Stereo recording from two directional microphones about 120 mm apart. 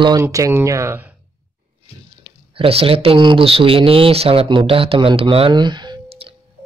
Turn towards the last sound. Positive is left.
turn(degrees=-50)  # may be behind; listen again after turning